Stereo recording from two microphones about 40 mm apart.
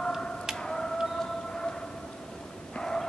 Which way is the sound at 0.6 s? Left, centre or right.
Centre.